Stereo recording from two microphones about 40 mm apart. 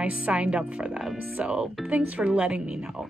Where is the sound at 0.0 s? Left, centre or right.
Right.